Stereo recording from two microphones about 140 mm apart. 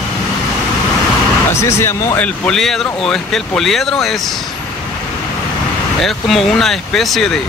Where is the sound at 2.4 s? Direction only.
5° left (ahead or behind).